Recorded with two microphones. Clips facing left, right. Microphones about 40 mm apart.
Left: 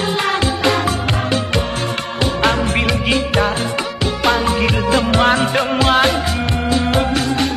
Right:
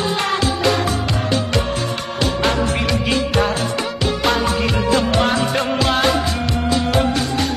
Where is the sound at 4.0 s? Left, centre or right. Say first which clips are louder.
Left 2 dB; centre.